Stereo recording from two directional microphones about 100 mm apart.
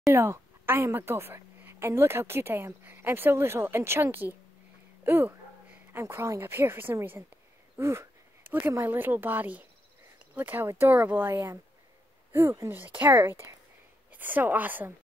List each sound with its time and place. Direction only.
0.1 s a woman's voice: 25° right (ahead or behind)